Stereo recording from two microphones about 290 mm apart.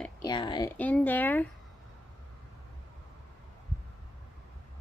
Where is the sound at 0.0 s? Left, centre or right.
Centre.